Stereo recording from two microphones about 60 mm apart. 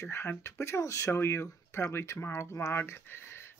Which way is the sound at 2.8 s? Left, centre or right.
Left.